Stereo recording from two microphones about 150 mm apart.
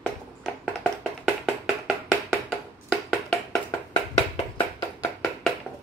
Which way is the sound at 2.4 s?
5° left (ahead or behind).